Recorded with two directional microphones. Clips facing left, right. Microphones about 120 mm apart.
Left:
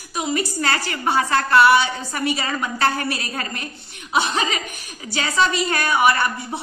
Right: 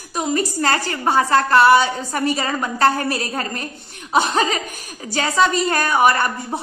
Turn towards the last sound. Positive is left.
turn(degrees=-40)  # may be behind; listen again after turning